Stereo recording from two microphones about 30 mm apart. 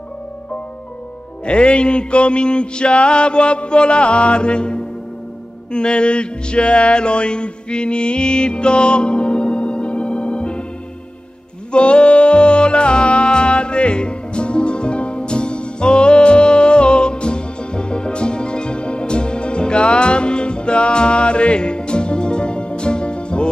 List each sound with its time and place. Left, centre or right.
1.4 s music: left
11.7 s music: left